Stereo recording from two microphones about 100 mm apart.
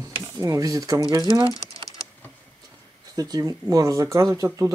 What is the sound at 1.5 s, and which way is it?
Typing, 35° left (ahead or behind).